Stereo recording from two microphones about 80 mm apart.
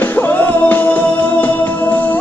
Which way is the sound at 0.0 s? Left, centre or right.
Left.